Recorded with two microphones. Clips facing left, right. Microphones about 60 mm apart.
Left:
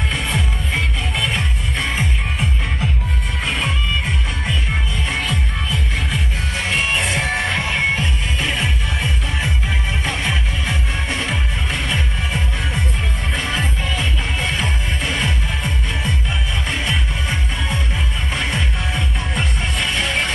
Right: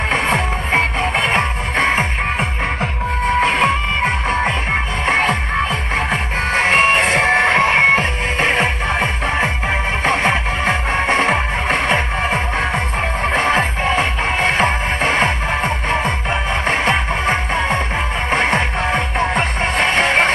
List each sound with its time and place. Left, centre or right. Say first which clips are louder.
0.1 s music: right 6 dB; right